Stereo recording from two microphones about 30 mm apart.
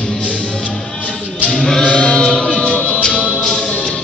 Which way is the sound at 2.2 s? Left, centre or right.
Left.